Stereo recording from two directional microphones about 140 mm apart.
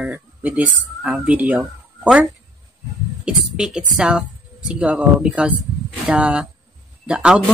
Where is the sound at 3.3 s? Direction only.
5° right (ahead or behind).